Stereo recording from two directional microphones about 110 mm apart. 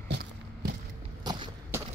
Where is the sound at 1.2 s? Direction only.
40° right (ahead or behind).